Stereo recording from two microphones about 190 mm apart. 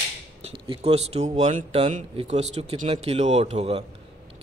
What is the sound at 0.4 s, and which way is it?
Speech, 30° right (ahead or behind).